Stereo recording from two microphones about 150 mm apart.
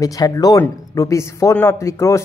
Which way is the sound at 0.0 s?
25° left (ahead or behind).